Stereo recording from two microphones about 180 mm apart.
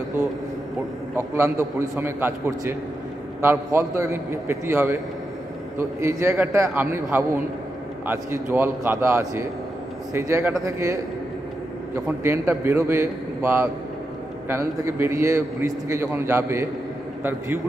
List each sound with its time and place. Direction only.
1.1 s a man's voice: 15° right (ahead or behind)
12.2 s a man's voice: 15° right (ahead or behind)